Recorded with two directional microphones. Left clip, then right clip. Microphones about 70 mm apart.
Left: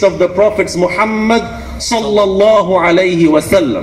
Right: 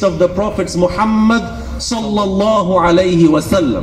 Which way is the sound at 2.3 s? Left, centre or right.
Right.